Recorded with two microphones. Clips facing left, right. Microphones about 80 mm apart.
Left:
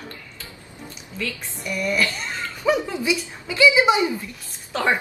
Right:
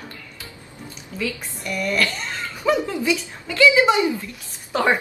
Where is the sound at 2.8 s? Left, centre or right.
Left.